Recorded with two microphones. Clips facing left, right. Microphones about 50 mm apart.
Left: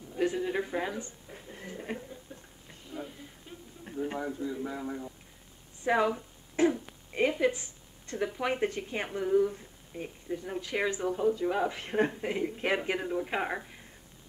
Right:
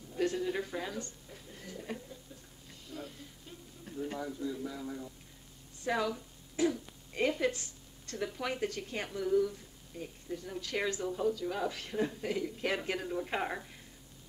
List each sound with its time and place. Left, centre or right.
0.1 s a woman's voice: centre
1.3 s television: left
2.9 s a sound: centre
3.8 s speech: left
10.6 s speech: centre
11.9 s speech: left; by 13.7 s centre